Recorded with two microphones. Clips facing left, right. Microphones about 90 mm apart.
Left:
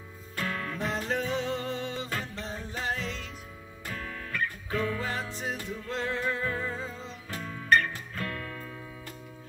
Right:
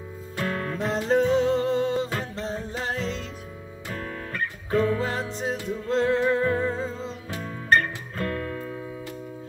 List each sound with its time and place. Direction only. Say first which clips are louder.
0.4 s music: right 5 dB; 35° right (ahead or behind)